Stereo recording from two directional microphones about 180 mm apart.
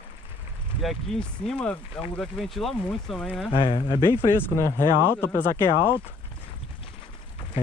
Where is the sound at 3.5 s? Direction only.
30° left (ahead or behind).